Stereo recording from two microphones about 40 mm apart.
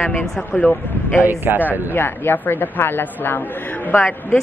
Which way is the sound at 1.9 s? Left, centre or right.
Left.